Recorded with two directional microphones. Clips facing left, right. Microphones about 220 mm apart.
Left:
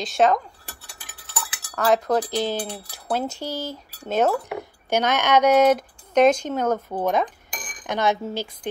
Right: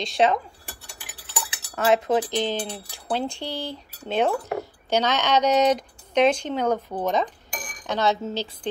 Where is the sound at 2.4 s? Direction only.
10° left (ahead or behind).